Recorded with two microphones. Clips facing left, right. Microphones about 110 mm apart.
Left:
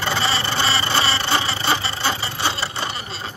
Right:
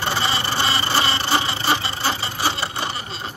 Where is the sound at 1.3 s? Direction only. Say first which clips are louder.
Even; 20° right (ahead or behind).